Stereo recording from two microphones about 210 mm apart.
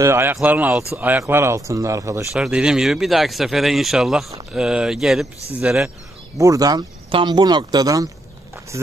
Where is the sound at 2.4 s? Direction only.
5° right (ahead or behind).